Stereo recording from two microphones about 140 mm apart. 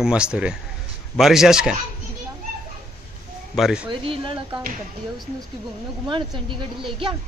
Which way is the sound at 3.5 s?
5° right (ahead or behind).